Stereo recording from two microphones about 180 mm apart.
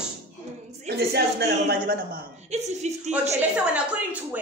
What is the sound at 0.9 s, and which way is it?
Speech, 65° right (ahead or behind).